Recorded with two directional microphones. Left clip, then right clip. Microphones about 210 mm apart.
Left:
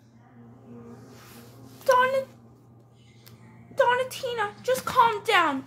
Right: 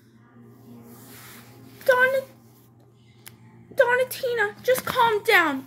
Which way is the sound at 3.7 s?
Centre (ahead or behind).